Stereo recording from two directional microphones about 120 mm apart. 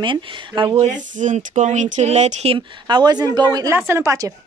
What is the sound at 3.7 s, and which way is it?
Speech, 20° right (ahead or behind).